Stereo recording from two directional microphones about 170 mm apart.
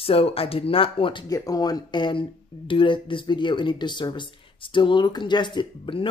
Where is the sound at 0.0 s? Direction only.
35° left (ahead or behind).